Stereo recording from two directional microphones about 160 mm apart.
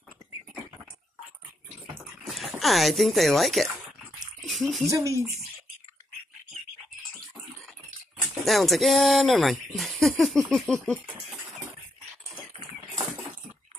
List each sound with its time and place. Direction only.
2.2 s dog: centre (ahead or behind)
2.6 s speech: centre (ahead or behind)
4.4 s a sound: centre (ahead or behind)
4.8 s speech: 20° right (ahead or behind)
8.5 s speech: centre (ahead or behind)